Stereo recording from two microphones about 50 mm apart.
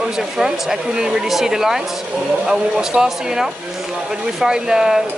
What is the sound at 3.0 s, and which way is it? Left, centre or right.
Speech, centre.